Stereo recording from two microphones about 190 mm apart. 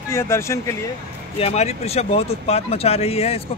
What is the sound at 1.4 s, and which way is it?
Speech, 35° left (ahead or behind).